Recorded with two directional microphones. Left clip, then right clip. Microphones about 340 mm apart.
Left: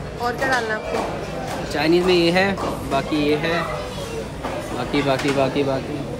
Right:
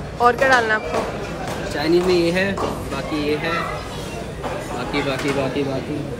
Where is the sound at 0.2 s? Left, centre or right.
Centre.